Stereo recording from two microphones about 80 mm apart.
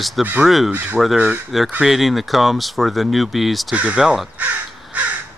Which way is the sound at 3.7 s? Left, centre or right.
Centre.